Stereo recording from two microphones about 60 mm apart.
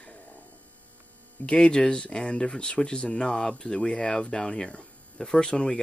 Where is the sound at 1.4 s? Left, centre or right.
Centre.